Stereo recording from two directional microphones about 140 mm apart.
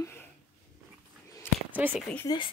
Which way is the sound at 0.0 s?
20° left (ahead or behind).